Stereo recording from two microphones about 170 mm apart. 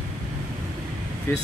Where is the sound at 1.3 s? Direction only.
15° left (ahead or behind).